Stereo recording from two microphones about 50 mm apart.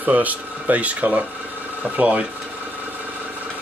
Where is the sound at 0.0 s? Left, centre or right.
Right.